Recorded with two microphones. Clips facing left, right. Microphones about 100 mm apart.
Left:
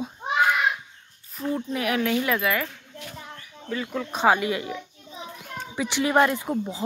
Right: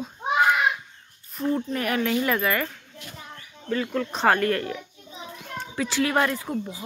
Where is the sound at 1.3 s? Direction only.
Centre (ahead or behind).